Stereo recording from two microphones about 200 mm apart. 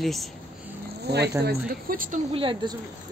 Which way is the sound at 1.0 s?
55° right (ahead or behind).